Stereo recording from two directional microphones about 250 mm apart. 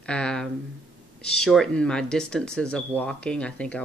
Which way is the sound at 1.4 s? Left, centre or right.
Centre.